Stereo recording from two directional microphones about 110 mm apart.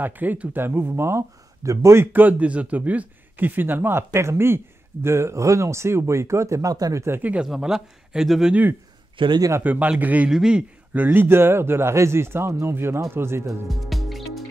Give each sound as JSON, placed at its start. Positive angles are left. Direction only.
{"t": 0.0, "sound": "speech", "side_deg": -15}
{"t": 7.4, "sound": "speech", "side_deg": -5}
{"t": 9.2, "sound": "speech", "side_deg": -50}
{"t": 9.6, "sound": "a man's voice", "side_deg": -15}
{"t": 13.7, "sound": "music", "side_deg": 0}